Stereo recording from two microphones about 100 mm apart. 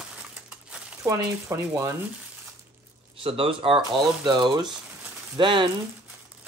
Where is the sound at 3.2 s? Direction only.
70° right (ahead or behind).